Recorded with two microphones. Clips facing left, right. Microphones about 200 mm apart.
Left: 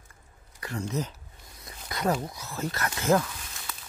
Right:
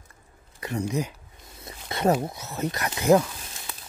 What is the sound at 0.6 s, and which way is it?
Speech, 20° right (ahead or behind).